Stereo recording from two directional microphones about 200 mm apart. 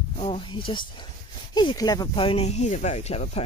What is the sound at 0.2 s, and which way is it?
Speech, 25° left (ahead or behind).